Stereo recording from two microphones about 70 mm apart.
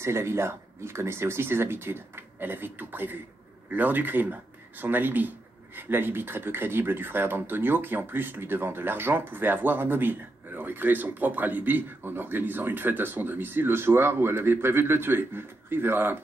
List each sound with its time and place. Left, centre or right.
0.0 s speech: right